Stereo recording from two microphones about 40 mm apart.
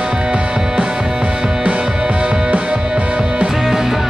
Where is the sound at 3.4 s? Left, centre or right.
Centre.